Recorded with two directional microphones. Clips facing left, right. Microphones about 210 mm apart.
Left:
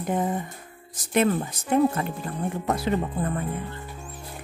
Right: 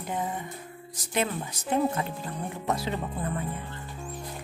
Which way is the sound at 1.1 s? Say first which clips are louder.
Left 7 dB; 50° left (ahead or behind).